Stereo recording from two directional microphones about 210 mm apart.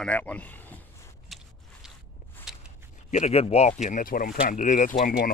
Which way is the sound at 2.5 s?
Centre (ahead or behind).